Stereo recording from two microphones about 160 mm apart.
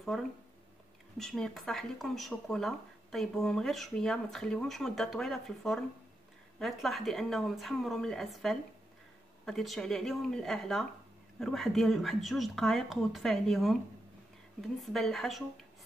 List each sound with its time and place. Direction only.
1.1 s speech: centre (ahead or behind)